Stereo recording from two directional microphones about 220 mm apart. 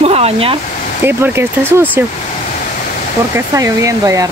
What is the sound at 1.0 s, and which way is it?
Speech, 10° right (ahead or behind).